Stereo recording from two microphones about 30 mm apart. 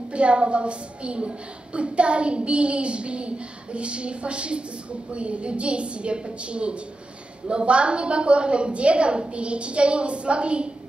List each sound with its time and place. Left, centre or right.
0.1 s a woman's voice: right